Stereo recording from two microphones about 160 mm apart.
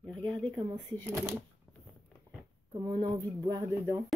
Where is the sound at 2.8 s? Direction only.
20° right (ahead or behind).